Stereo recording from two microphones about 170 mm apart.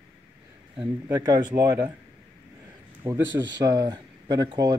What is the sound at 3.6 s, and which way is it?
Speech, 20° right (ahead or behind).